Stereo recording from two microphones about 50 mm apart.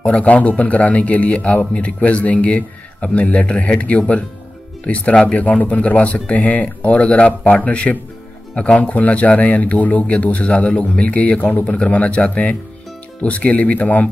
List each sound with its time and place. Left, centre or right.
0.0 s speech: left